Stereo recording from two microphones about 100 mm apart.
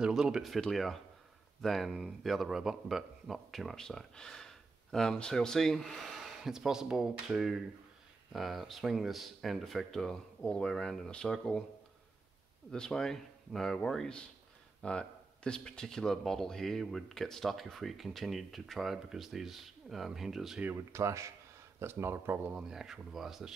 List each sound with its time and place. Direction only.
0.0 s speech: 5° right (ahead or behind)
12.7 s speech: 5° left (ahead or behind)
20.7 s speech: 30° right (ahead or behind)
22.5 s speech: 5° right (ahead or behind)